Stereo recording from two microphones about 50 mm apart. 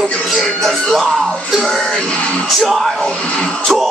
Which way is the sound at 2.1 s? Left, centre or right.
Left.